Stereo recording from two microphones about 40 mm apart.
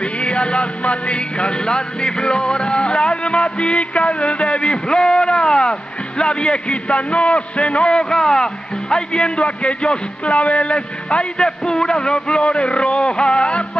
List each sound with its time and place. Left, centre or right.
0.2 s music: left